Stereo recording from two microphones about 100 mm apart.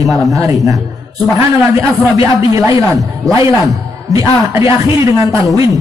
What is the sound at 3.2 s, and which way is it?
Speech, 35° right (ahead or behind).